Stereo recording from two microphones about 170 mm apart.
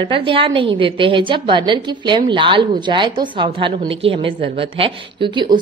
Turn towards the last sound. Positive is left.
turn(degrees=-30)  # may be behind; listen again after turning